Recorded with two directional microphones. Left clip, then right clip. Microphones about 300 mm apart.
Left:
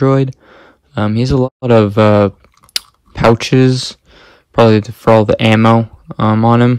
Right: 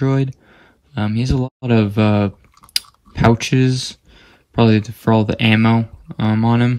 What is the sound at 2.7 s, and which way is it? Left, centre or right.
Chewing, centre.